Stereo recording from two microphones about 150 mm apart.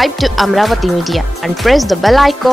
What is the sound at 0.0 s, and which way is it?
Speech, centre (ahead or behind).